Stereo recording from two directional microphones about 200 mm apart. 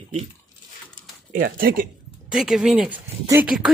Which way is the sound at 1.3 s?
50° right (ahead or behind).